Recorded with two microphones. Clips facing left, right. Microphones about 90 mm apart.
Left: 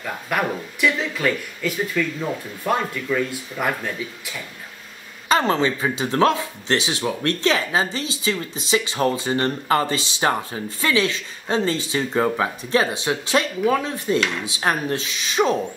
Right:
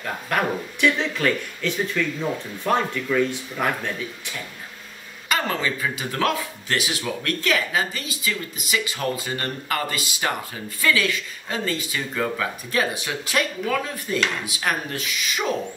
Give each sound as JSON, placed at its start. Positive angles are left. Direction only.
{"t": 0.0, "sound": "speech", "side_deg": 5}
{"t": 5.3, "sound": "speech", "side_deg": 25}